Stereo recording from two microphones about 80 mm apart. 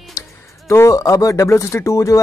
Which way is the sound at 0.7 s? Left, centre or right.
Left.